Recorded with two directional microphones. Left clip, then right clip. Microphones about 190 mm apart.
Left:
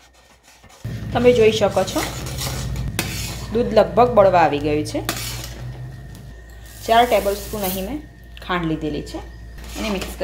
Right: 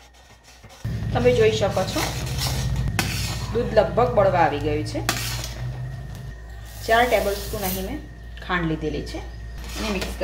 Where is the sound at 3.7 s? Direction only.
35° left (ahead or behind).